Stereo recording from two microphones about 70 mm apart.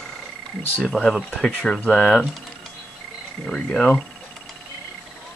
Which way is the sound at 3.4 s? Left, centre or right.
Centre.